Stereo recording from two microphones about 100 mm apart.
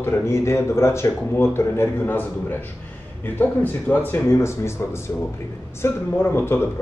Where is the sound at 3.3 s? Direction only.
15° left (ahead or behind).